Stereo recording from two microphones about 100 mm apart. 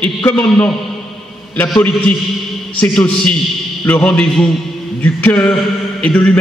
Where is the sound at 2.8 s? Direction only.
10° left (ahead or behind).